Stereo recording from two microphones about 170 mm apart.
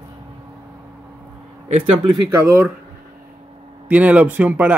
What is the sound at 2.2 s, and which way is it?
Speech, 15° right (ahead or behind).